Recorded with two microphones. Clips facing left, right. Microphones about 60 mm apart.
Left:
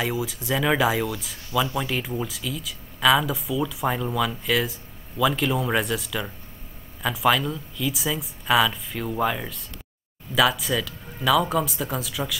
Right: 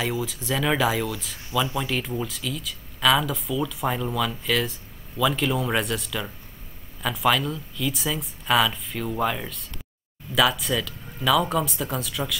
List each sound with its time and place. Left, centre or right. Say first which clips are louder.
0.0 s speech: left 1 dB; centre